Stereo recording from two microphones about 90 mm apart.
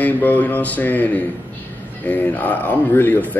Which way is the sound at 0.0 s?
20° left (ahead or behind).